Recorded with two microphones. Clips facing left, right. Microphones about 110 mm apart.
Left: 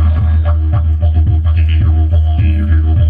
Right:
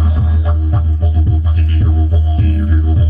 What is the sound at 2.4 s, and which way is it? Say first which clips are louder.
Music: right 2 dB; 25° right (ahead or behind).